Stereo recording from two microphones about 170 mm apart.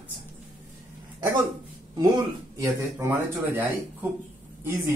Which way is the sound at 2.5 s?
15° right (ahead or behind).